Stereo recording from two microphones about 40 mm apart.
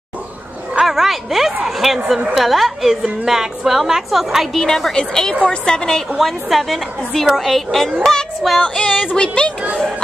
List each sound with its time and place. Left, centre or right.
0.8 s a woman's voice: centre
2.0 s a woman's voice: centre
2.3 s a woman's voice: centre
4.6 s a woman's voice: centre
6.1 s a woman's voice: centre
8.0 s a woman's voice: centre
8.6 s child singing: left
9.2 s speech: left